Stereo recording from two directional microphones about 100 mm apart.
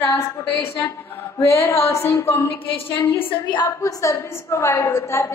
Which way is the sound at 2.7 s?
65° left (ahead or behind).